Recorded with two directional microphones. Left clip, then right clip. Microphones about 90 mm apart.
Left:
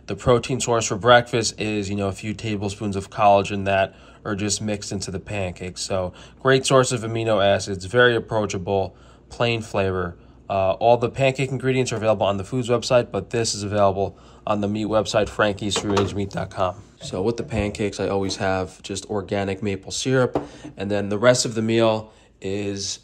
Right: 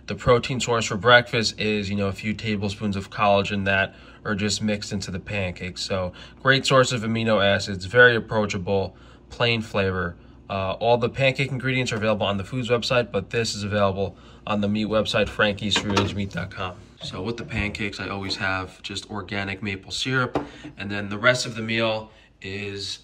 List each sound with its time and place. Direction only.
0.1 s speech: 25° left (ahead or behind)
16.5 s speech: 45° left (ahead or behind)
21.2 s speech: 55° left (ahead or behind)
22.4 s speech: 45° left (ahead or behind)